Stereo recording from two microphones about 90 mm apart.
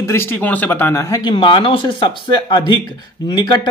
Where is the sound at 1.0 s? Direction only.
40° left (ahead or behind).